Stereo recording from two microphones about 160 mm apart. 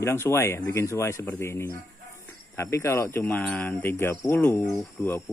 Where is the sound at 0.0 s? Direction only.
15° left (ahead or behind).